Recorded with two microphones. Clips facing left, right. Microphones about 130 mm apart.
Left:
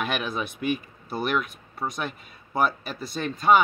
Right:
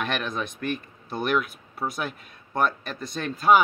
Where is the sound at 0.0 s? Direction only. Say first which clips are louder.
Even; 5° left (ahead or behind).